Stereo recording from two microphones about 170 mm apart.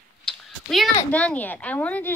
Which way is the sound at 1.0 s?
10° left (ahead or behind).